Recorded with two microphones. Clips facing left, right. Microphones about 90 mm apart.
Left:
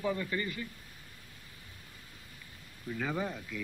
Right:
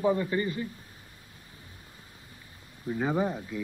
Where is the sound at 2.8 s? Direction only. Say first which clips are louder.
Right 7 dB; 25° right (ahead or behind).